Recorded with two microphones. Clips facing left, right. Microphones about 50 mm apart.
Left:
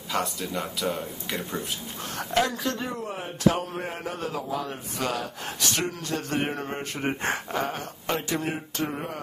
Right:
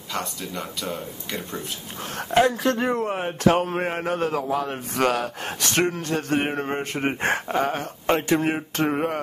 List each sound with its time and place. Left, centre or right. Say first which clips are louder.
0.1 s speech: left 2 dB; centre
2.1 s speech: right 6 dB; right